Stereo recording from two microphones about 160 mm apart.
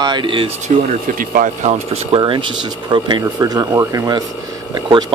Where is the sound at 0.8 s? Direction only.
55° right (ahead or behind).